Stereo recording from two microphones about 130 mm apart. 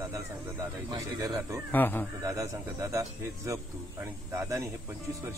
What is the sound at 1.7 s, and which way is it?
Speech, 15° left (ahead or behind).